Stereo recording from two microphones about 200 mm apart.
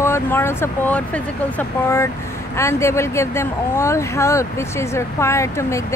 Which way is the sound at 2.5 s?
15° left (ahead or behind).